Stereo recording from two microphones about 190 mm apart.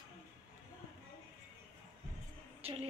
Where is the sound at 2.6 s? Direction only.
30° right (ahead or behind).